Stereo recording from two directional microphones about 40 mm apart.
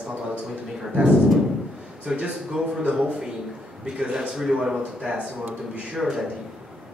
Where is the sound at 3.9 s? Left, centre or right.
Right.